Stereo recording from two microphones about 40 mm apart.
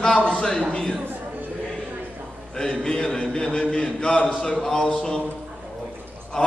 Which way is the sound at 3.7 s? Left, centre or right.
Left.